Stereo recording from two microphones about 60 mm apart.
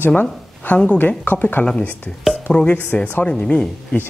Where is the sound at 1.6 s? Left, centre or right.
Left.